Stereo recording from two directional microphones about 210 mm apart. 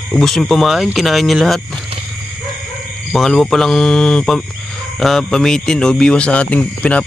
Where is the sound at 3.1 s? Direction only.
Centre (ahead or behind).